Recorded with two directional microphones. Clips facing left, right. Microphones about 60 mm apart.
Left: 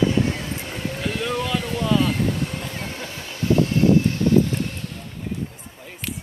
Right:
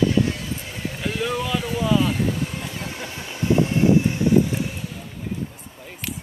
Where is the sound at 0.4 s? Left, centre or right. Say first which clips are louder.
Left 1 dB; left.